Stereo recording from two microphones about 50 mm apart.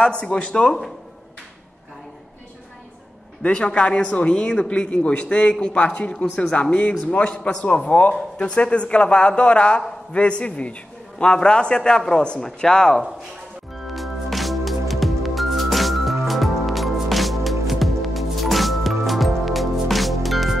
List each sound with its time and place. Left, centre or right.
0.0 s a man's voice: centre
3.4 s a man's voice: left
13.8 s music: centre